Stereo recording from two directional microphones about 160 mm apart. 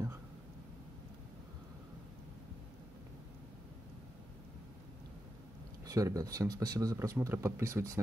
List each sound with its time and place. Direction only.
5.9 s speech: 20° right (ahead or behind)